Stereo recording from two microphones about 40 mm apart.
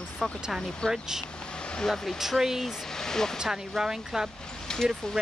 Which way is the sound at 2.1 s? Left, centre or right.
Centre.